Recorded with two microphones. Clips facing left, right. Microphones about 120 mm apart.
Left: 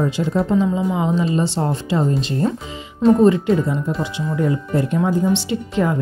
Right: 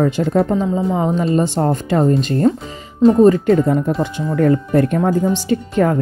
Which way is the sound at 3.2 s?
45° right (ahead or behind).